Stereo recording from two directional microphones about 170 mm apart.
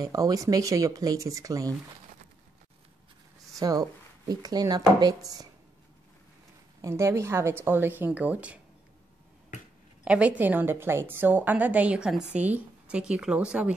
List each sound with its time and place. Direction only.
0.0 s speech: 20° right (ahead or behind)
3.5 s speech: 20° right (ahead or behind)
6.8 s a woman's voice: 15° right (ahead or behind)
10.0 s a woman's voice: 5° right (ahead or behind)